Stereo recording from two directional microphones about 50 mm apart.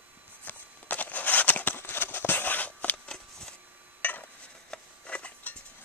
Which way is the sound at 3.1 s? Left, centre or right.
Centre.